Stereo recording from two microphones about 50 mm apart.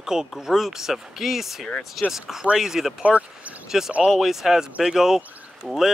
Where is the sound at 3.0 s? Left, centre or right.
Right.